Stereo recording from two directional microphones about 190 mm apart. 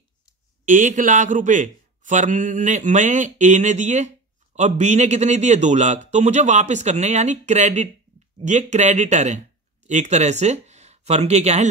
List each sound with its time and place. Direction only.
0.7 s a man's voice: 40° right (ahead or behind)